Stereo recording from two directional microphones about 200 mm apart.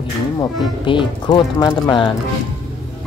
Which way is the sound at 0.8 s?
25° left (ahead or behind).